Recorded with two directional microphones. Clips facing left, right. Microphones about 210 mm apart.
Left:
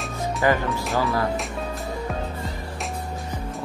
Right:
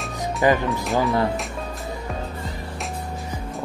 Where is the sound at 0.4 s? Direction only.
20° right (ahead or behind).